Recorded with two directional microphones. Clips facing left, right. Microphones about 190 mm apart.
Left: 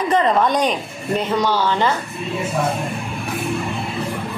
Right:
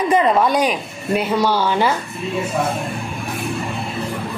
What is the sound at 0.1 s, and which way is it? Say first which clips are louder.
A woman's voice: right 1 dB; 10° right (ahead or behind).